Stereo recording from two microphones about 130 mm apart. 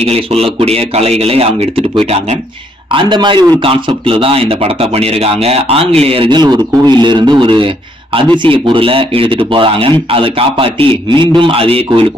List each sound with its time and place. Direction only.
0.0 s a man's voice: 50° right (ahead or behind)
2.9 s a man's voice: 40° right (ahead or behind)